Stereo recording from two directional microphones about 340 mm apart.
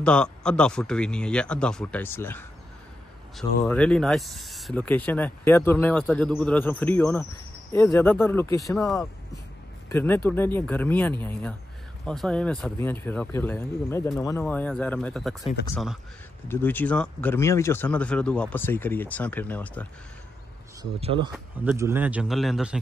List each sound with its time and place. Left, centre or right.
0.0 s speech: centre
21.0 s speech: centre